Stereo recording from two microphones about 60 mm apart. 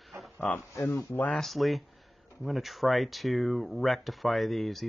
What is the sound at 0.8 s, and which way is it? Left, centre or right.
Speech, left.